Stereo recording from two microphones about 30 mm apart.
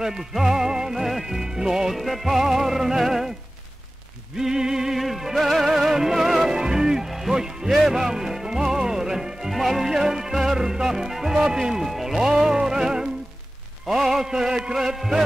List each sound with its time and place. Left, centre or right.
0.3 s music: centre
0.9 s music: centre
1.4 s music: centre
1.9 s music: centre
4.4 s music: centre
4.9 s music: centre
11.8 s music: centre
12.2 s music: right